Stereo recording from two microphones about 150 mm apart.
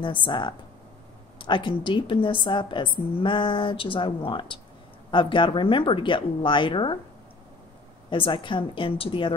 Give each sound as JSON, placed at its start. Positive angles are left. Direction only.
{"t": 0.0, "sound": "a woman's voice", "side_deg": 30}
{"t": 8.1, "sound": "a woman's voice", "side_deg": 35}